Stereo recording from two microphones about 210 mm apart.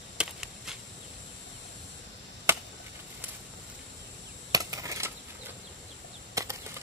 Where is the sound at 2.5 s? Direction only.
10° right (ahead or behind).